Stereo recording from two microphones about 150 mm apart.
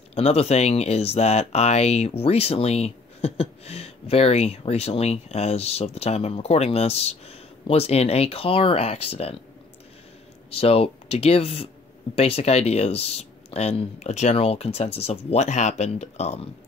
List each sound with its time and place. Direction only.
0.1 s speech: 45° left (ahead or behind)
10.5 s speech: 40° left (ahead or behind)